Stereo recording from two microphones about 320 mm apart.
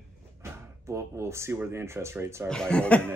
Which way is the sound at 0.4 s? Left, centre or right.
Centre.